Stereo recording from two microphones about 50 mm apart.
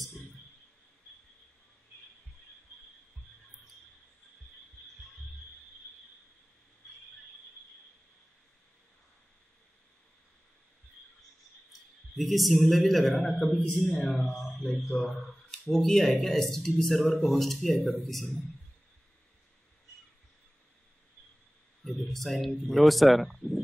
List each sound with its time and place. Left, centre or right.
12.2 s speech: centre
14.5 s speech: left
15.6 s speech: centre
21.8 s a sound: centre
22.6 s speech: centre